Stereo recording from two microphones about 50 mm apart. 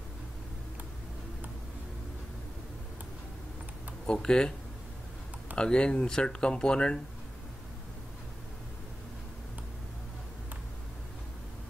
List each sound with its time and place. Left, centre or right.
4.0 s speech: centre
5.6 s speech: centre